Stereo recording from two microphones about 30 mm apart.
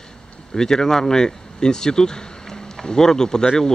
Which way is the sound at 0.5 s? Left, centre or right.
Centre.